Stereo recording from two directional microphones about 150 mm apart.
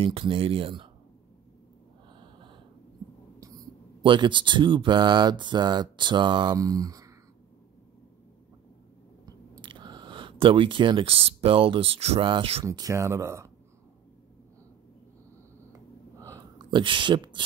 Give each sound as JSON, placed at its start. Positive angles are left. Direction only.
{"t": 0.0, "sound": "speech", "side_deg": -35}
{"t": 2.1, "sound": "gasp", "side_deg": -30}
{"t": 4.0, "sound": "speech", "side_deg": -35}
{"t": 9.2, "sound": "chewing", "side_deg": -35}
{"t": 10.4, "sound": "speech", "side_deg": -35}
{"t": 12.6, "sound": "speech", "side_deg": -20}
{"t": 15.7, "sound": "a sound", "side_deg": -25}